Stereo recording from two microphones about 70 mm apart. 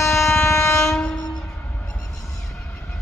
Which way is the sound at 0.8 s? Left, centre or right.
Centre.